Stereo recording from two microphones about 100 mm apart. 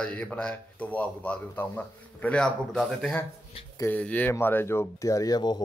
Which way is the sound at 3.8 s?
15° left (ahead or behind).